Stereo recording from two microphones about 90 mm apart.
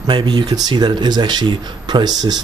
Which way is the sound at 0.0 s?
55° right (ahead or behind).